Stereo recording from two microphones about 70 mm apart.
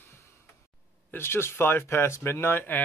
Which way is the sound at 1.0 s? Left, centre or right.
Left.